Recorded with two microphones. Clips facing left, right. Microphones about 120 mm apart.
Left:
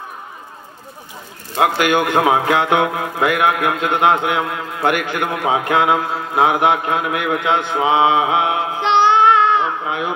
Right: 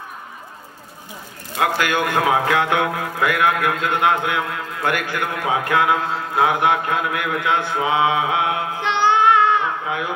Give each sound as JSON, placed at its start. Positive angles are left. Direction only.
{"t": 1.6, "sound": "speech", "side_deg": 20}